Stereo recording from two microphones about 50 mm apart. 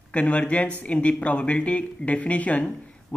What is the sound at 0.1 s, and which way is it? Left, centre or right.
A man's voice, left.